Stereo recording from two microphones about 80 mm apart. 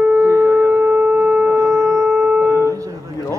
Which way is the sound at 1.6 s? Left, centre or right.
Right.